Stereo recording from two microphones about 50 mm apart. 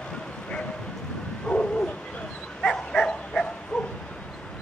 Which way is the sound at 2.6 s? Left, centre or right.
Centre.